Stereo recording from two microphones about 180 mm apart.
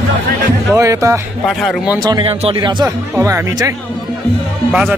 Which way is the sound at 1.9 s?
20° right (ahead or behind).